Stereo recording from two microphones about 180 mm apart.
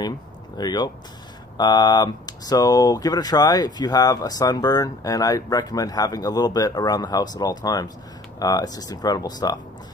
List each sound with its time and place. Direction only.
0.6 s speech: 20° left (ahead or behind)